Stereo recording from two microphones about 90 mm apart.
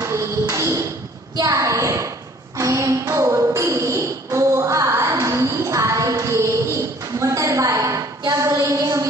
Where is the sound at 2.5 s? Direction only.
35° right (ahead or behind).